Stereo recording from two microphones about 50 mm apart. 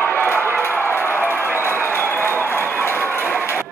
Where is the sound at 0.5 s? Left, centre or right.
Left.